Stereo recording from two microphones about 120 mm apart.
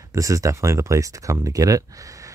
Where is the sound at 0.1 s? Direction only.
25° right (ahead or behind).